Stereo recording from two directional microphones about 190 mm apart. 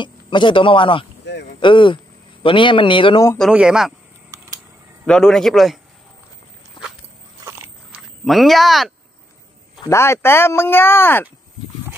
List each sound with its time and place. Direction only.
0.0 s speech: 25° left (ahead or behind)
3.3 s a man's voice: centre (ahead or behind)
5.0 s a man's voice: 5° left (ahead or behind)
7.4 s biting: 10° right (ahead or behind)
8.3 s a man's voice: centre (ahead or behind)
9.8 s speech: 15° left (ahead or behind)